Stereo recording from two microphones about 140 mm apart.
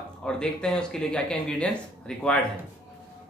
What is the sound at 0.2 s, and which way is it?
Speech, 5° left (ahead or behind).